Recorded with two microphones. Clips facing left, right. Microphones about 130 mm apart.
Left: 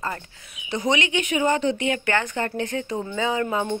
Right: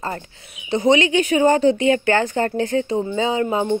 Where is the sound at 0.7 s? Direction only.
30° right (ahead or behind).